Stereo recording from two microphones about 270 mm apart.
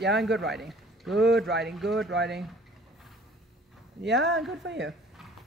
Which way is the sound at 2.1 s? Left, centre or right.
Right.